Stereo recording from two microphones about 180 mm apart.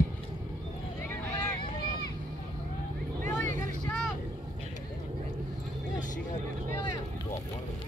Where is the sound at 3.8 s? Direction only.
5° left (ahead or behind).